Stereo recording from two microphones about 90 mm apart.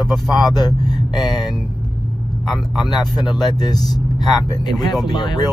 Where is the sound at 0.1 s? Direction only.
Centre (ahead or behind).